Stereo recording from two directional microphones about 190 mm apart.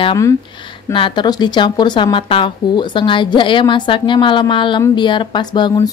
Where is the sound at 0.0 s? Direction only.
20° left (ahead or behind).